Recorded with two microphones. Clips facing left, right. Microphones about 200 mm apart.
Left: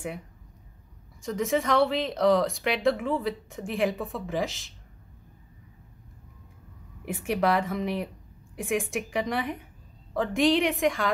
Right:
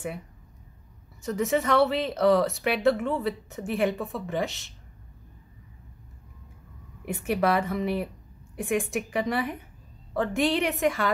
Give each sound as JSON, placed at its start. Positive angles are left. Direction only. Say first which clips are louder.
{"t": 1.2, "sound": "speech", "louder": "right 1 dB", "side_deg": 0}
{"t": 7.1, "sound": "speech", "louder": "right 1 dB", "side_deg": 0}